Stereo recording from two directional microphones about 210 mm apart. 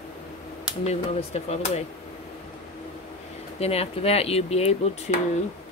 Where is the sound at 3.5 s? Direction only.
30° left (ahead or behind).